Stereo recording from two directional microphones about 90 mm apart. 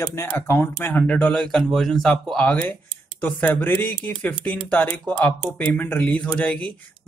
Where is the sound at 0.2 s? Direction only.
25° left (ahead or behind).